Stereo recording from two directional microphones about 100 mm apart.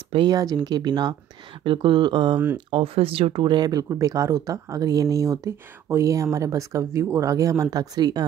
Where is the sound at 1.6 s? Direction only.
55° right (ahead or behind).